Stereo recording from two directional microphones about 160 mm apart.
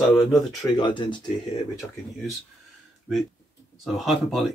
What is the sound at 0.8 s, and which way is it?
Speech, 30° left (ahead or behind).